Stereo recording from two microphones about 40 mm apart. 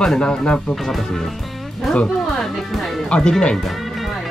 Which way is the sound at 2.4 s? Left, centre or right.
Centre.